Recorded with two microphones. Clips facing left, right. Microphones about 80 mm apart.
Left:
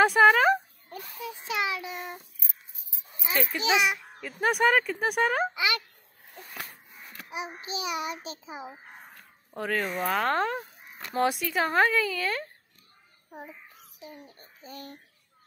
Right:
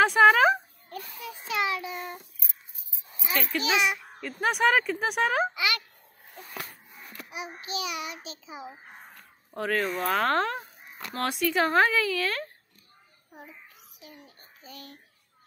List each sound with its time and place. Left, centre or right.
0.0 s speech: centre
0.8 s a child's voice: centre
3.3 s a child's voice: centre
4.2 s speech: centre
5.5 s a child's voice: left
7.2 s a child's voice: left
9.5 s speech: centre
13.9 s a child's voice: left